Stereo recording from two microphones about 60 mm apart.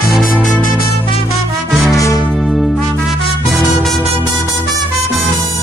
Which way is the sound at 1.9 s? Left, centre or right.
Left.